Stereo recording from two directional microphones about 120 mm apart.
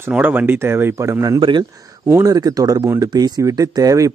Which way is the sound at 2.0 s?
25° right (ahead or behind).